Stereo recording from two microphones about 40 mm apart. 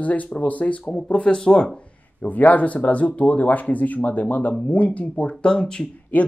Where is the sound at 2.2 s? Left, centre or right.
Left.